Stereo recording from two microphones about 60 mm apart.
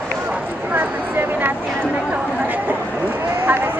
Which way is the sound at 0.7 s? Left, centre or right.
Right.